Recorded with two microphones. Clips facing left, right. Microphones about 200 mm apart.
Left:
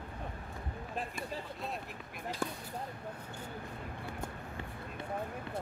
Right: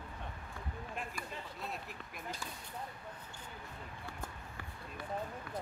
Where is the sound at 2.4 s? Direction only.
60° left (ahead or behind).